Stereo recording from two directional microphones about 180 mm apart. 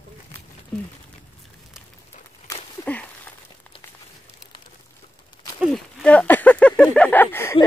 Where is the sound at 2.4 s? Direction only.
10° left (ahead or behind).